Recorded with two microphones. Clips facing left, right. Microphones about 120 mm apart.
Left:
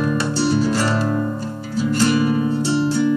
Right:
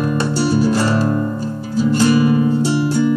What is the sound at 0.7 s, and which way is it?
Music, 45° right (ahead or behind).